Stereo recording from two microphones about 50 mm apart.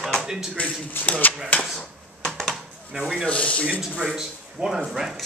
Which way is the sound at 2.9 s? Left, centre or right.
Centre.